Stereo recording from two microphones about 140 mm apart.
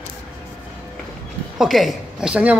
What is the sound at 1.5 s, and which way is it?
Speech, centre (ahead or behind).